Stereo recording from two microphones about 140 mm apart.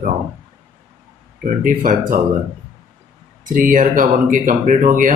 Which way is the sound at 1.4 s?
80° right.